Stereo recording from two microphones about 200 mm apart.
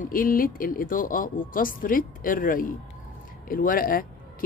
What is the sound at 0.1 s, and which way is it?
Speech, 45° left (ahead or behind).